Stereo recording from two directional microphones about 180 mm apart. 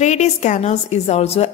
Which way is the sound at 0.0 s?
40° left (ahead or behind).